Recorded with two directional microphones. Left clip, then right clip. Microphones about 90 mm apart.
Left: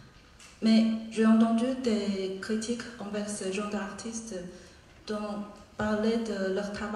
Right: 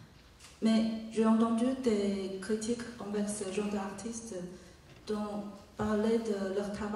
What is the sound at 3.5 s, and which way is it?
Speech, 10° right (ahead or behind).